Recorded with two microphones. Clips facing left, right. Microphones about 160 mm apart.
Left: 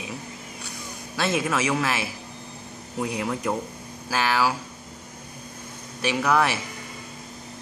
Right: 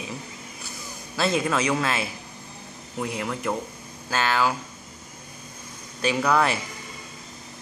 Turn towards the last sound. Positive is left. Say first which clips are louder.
# even
turn(degrees=5)  # may be behind; listen again after turning